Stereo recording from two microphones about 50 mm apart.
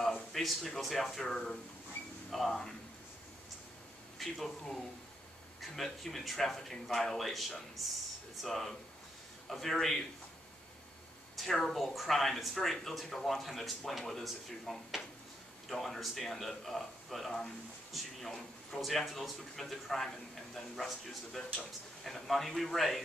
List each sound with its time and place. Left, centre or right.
0.3 s speech: centre
4.2 s speech: centre
11.3 s speech: centre